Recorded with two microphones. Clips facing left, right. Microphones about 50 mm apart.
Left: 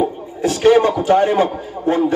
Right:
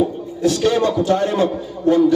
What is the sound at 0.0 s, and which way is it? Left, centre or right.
A man's voice, left.